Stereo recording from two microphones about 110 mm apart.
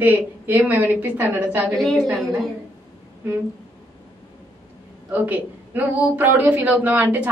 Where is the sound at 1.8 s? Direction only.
Centre (ahead or behind).